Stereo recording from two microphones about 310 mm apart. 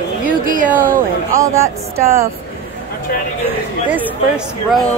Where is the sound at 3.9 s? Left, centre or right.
Centre.